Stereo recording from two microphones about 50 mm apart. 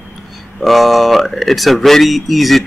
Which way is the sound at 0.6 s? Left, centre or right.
Centre.